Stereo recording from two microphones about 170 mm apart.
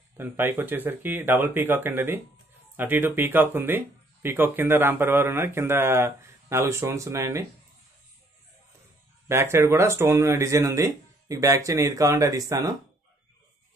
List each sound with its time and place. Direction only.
0.2 s speech: 15° right (ahead or behind)
9.3 s speech: 15° right (ahead or behind)